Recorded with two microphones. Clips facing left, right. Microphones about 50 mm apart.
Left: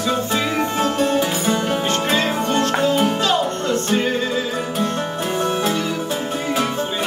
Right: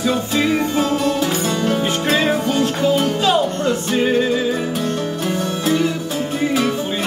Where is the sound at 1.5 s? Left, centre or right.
Centre.